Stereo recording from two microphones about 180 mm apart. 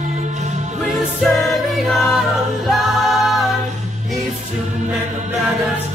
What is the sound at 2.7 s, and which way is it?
A capella, centre (ahead or behind).